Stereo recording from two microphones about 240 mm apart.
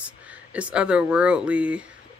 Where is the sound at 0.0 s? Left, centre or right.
Centre.